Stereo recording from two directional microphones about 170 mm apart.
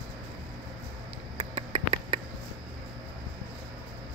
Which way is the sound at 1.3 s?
30° right (ahead or behind).